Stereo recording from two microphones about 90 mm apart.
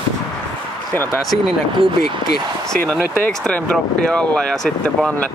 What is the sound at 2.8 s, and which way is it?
Speech, 20° left (ahead or behind).